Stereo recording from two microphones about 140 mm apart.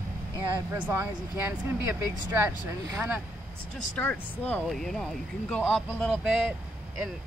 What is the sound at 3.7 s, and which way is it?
Speech, 10° left (ahead or behind).